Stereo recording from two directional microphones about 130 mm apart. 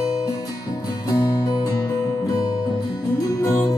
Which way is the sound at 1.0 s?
30° left (ahead or behind).